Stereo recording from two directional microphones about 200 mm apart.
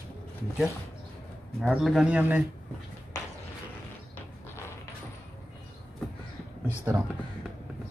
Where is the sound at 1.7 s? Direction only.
Centre (ahead or behind).